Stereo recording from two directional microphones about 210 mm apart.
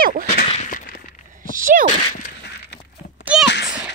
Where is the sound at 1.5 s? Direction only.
40° right (ahead or behind).